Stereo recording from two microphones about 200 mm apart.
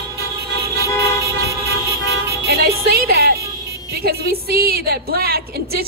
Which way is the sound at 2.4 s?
50° right (ahead or behind).